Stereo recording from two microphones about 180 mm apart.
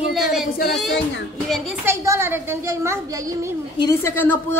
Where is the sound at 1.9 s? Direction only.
15° right (ahead or behind).